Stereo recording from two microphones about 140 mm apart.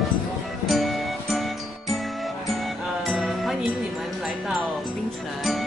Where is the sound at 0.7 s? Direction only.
Centre (ahead or behind).